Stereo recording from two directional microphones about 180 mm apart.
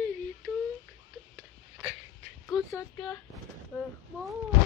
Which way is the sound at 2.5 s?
5° right (ahead or behind).